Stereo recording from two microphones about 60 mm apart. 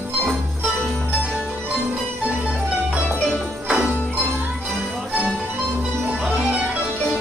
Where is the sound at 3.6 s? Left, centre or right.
Centre.